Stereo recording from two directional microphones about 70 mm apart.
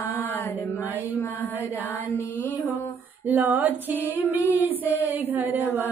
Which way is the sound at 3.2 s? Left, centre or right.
Right.